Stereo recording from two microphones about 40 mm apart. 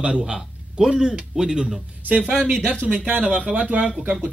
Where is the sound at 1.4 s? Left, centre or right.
Centre.